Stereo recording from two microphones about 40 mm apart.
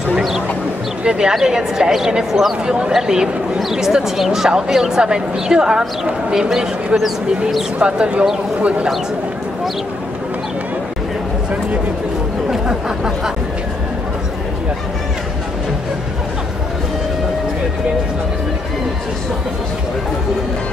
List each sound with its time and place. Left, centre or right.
1.0 s speech: right
2.6 s speech: right
7.8 s speech: right
12.4 s a sound: centre